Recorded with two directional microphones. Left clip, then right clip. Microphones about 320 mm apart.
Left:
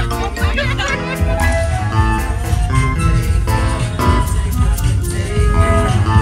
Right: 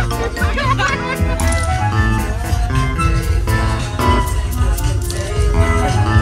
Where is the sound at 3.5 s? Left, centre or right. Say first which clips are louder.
Even; centre.